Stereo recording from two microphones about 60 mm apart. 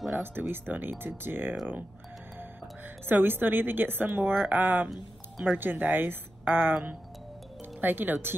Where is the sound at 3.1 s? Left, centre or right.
Right.